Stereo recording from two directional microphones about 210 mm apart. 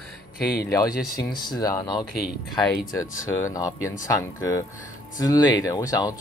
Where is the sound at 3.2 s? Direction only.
15° left (ahead or behind).